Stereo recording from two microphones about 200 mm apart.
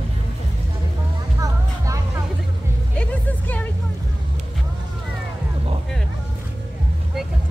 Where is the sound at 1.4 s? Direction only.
15° right (ahead or behind).